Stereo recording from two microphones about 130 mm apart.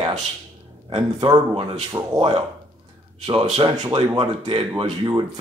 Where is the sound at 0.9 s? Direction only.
45° right (ahead or behind).